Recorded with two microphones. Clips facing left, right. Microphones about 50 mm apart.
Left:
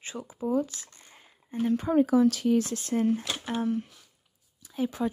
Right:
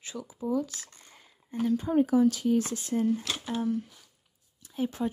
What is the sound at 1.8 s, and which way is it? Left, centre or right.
Speech, left.